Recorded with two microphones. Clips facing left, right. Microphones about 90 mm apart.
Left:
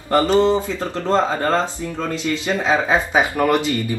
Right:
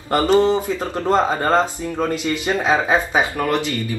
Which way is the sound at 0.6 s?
15° right (ahead or behind).